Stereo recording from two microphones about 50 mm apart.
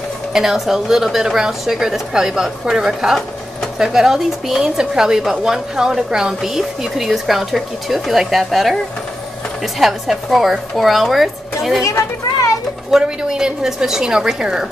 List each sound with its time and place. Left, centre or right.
0.3 s speech: centre
9.8 s speech: centre
11.8 s speech: left
13.0 s speech: centre